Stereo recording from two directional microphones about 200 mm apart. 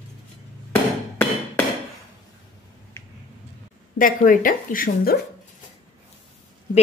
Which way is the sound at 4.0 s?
45° left (ahead or behind).